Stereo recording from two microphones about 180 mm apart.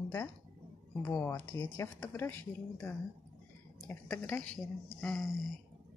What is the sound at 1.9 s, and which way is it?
Speech, 10° left (ahead or behind).